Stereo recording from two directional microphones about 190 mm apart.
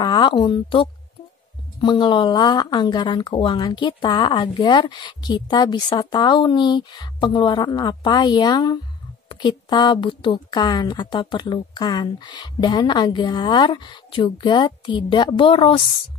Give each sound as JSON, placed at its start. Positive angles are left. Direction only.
{"t": 0.0, "sound": "speech", "side_deg": 25}